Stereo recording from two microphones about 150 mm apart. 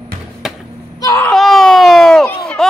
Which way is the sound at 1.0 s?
20° left (ahead or behind).